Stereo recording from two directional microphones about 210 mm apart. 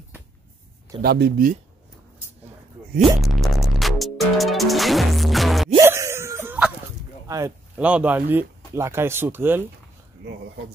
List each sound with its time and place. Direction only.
1.0 s speech: 50° right (ahead or behind)
3.0 s music: centre (ahead or behind)
5.8 s wheeze: 15° right (ahead or behind)
7.2 s speech: 15° right (ahead or behind)